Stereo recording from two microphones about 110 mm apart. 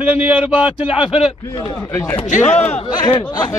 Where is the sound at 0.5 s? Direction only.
55° left (ahead or behind).